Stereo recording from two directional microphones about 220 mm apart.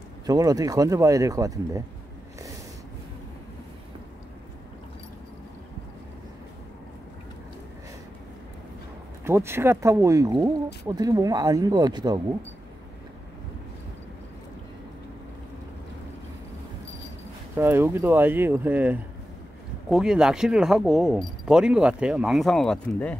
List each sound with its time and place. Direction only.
0.3 s speech: 15° right (ahead or behind)
9.2 s speech: 10° right (ahead or behind)
17.6 s speech: 10° right (ahead or behind)